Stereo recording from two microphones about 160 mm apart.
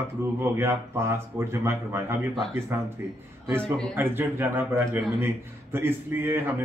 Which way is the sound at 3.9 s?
15° right (ahead or behind).